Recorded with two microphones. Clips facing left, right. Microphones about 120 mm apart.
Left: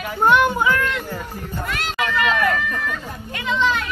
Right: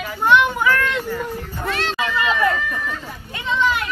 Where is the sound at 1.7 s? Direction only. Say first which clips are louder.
Right 3 dB; 30° right (ahead or behind).